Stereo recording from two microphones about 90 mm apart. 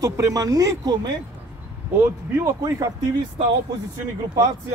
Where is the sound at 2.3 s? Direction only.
30° right (ahead or behind).